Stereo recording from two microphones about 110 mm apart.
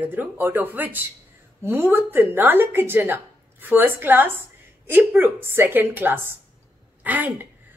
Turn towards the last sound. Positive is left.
turn(degrees=-15)  # may be behind; listen again after turning